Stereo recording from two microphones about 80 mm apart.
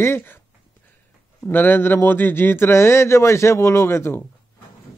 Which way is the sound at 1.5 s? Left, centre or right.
Left.